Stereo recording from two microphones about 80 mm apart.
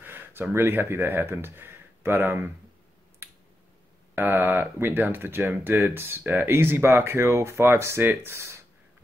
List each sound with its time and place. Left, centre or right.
0.0 s speech: right
4.1 s speech: right